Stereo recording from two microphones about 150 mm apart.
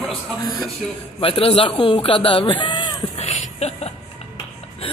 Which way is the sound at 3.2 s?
50° left (ahead or behind).